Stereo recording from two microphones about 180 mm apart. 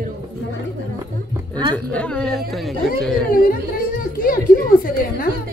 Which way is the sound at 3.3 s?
50° left (ahead or behind).